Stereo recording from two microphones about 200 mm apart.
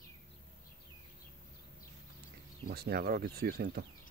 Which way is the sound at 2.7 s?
50° right (ahead or behind).